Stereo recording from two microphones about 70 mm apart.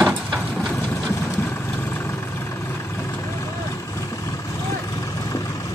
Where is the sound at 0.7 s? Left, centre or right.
Left.